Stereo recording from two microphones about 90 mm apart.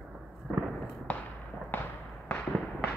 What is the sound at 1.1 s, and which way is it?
Fireworks, 15° left (ahead or behind).